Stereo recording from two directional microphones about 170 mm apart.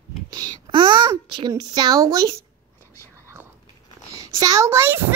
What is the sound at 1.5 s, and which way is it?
Speech, 20° right (ahead or behind).